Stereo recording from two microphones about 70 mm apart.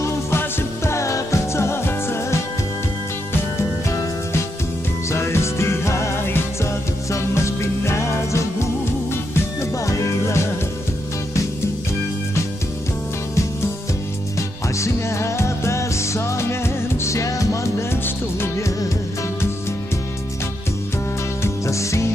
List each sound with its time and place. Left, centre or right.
0.0 s music: left
5.1 s music: left
14.8 s music: left
18.0 s music: left
21.4 s music: left